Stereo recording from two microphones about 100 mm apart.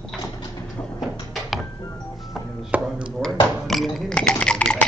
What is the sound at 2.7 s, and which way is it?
Chop, 15° right (ahead or behind).